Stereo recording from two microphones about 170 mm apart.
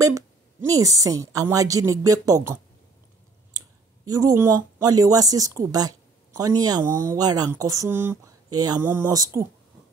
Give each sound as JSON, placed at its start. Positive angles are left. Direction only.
{"t": 0.0, "sound": "a woman's voice", "side_deg": -20}